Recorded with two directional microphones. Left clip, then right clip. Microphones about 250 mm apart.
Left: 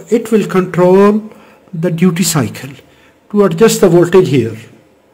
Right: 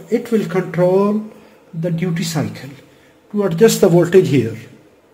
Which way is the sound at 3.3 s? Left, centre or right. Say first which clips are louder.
Left 4 dB; left.